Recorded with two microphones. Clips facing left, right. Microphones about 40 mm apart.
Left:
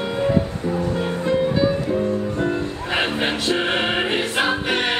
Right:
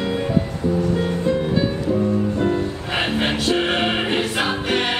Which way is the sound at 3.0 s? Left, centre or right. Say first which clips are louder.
Right 2 dB; left.